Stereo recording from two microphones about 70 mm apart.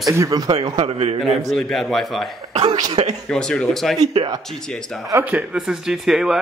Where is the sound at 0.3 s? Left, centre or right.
Right.